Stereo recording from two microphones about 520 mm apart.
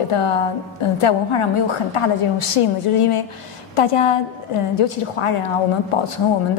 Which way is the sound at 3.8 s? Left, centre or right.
Left.